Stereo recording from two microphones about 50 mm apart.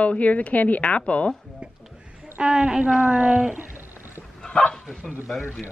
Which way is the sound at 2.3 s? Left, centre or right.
Centre.